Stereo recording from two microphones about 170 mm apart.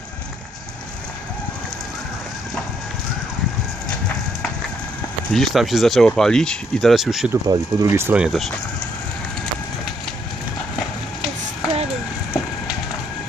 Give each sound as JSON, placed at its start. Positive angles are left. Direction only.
{"t": 5.3, "sound": "speech", "side_deg": 0}
{"t": 7.4, "sound": "speech", "side_deg": -15}